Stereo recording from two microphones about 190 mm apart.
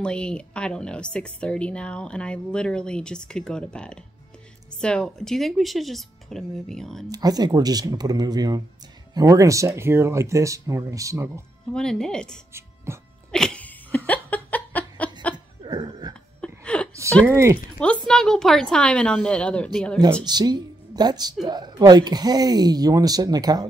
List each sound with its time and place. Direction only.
0.0 s a woman's voice: 5° left (ahead or behind)
7.1 s speech: 20° right (ahead or behind)
11.7 s a woman's voice: 5° left (ahead or behind)
12.5 s speech: 15° right (ahead or behind)
13.3 s laughter: 5° left (ahead or behind)
15.3 s laughter: 20° right (ahead or behind)
16.3 s a sound: 5° left (ahead or behind)
17.3 s speech: 15° right (ahead or behind)
18.0 s a woman's voice: 5° left (ahead or behind)
20.2 s speech: 20° right (ahead or behind)